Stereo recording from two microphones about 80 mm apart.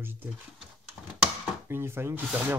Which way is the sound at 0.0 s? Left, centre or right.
Right.